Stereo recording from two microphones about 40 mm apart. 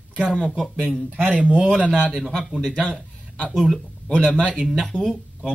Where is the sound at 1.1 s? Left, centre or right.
Right.